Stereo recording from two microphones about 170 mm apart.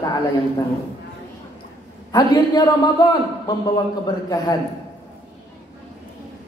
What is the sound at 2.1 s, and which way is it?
Speech, 25° left (ahead or behind).